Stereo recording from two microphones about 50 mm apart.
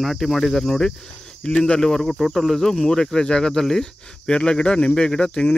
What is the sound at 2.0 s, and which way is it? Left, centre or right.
Speech, centre.